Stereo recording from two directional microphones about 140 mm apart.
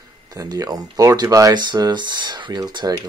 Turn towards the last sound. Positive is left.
turn(degrees=-30)  # may be behind; listen again after turning